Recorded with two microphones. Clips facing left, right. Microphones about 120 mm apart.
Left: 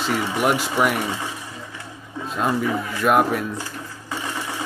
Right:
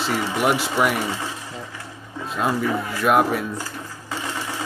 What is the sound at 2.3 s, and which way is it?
Speech, centre (ahead or behind).